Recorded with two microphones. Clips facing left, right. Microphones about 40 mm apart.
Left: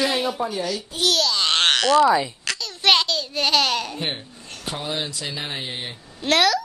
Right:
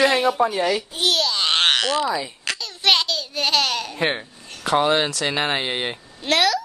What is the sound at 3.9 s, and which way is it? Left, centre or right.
Speech, right.